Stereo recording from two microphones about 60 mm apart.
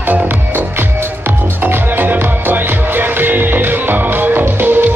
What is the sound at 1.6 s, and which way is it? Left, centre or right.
Music, right.